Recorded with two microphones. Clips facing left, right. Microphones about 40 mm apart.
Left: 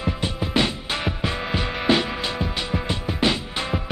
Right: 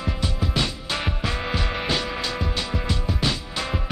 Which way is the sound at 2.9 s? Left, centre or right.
Left.